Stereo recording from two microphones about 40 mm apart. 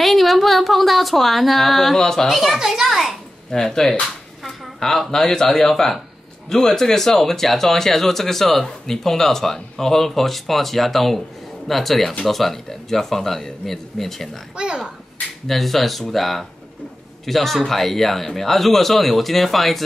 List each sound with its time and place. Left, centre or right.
0.0 s speech: centre
2.0 s speech: centre
2.2 s speech: centre
2.6 s a sound: centre
3.5 s speech: centre
14.6 s speech: right
15.4 s speech: centre